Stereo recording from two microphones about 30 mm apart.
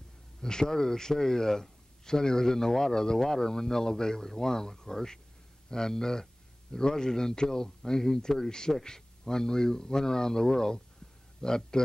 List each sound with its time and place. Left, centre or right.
0.4 s a man's voice: left